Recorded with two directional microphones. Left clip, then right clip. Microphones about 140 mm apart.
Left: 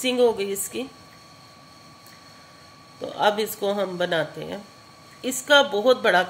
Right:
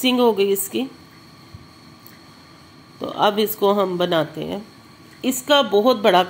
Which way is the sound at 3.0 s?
15° right (ahead or behind).